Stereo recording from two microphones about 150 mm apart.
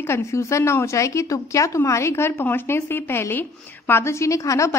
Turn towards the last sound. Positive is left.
turn(degrees=20)  # may be behind; listen again after turning